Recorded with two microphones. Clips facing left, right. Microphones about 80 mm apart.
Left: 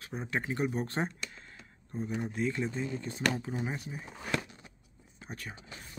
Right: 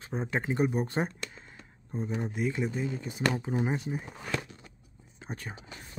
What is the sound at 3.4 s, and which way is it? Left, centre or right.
Speech, right.